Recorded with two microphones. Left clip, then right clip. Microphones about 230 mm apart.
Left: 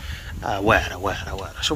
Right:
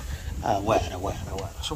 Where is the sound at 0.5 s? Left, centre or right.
Centre.